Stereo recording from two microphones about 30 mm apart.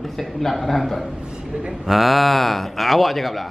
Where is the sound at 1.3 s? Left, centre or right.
Right.